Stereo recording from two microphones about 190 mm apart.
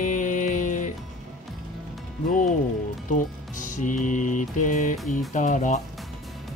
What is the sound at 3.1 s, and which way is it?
Speech, 40° left (ahead or behind).